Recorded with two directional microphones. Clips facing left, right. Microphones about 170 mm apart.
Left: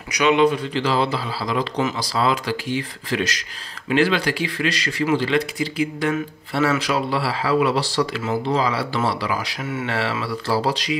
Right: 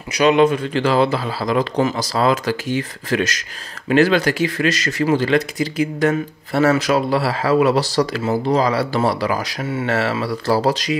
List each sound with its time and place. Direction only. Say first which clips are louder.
0.1 s speech: right 3 dB; 40° right (ahead or behind)